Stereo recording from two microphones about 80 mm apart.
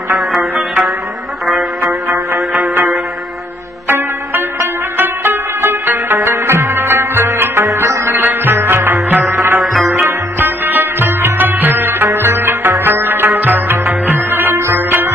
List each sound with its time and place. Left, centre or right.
0.3 s music: centre
2.6 s music: right